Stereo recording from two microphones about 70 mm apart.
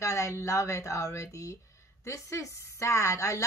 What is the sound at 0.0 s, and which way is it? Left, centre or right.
A woman's voice, left.